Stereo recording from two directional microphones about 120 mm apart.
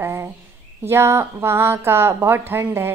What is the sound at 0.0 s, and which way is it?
A woman's voice, 25° right (ahead or behind).